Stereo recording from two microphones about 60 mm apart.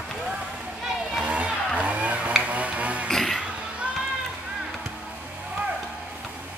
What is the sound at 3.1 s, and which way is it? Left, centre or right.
Music, centre.